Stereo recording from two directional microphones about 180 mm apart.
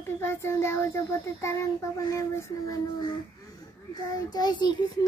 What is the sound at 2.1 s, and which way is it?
Speech, 15° left (ahead or behind).